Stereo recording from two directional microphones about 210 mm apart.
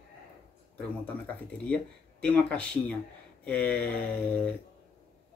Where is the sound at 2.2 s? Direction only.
5° left (ahead or behind).